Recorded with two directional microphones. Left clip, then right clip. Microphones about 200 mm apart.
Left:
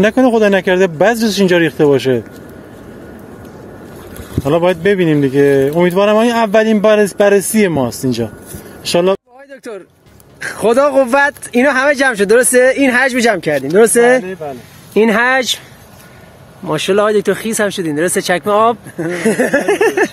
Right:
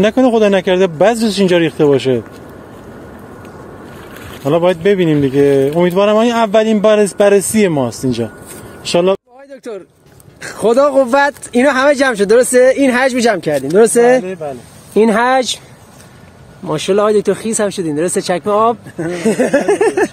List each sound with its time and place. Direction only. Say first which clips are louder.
0.0 s speech: even; centre (ahead or behind)
4.4 s speech: even; centre (ahead or behind)
8.8 s a sound: even; centre (ahead or behind)
10.4 s speech: even; centre (ahead or behind)
14.2 s speech: right 1 dB; 20° right (ahead or behind)
15.0 s speech: even; centre (ahead or behind)
16.6 s speech: even; centre (ahead or behind)